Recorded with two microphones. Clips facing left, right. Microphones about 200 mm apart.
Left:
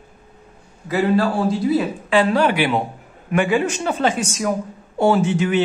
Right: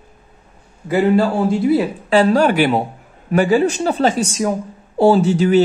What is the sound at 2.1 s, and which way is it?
A man's voice, 40° right (ahead or behind).